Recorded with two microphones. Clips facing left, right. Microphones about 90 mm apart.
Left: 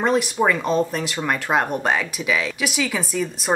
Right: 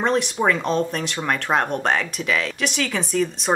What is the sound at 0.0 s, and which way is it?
Speech, 5° left (ahead or behind).